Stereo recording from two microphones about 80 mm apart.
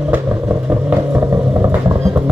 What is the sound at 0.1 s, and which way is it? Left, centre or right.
Vehicle, right.